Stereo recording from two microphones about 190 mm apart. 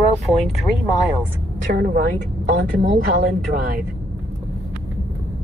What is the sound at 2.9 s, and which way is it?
Speech, 55° right (ahead or behind).